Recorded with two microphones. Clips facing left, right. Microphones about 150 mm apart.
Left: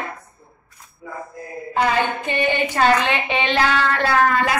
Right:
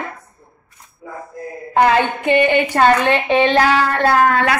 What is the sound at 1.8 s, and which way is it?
A woman's voice, 60° right (ahead or behind).